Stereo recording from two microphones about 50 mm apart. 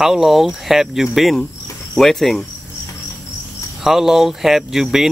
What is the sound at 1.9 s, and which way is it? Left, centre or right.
Cricket, centre.